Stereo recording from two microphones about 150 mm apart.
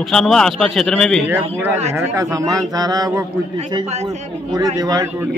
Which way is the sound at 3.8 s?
45° right (ahead or behind).